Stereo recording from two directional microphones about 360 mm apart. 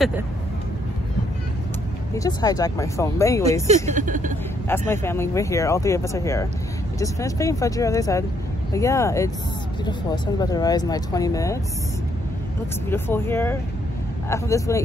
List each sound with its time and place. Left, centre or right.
2.1 s speech: centre
3.6 s speech: centre
4.6 s speech: centre
12.9 s speech: centre